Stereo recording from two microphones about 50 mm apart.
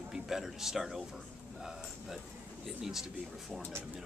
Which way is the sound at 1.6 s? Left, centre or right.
Centre.